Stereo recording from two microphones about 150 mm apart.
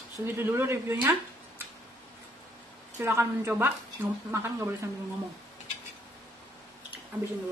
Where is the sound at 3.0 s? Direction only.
15° right (ahead or behind).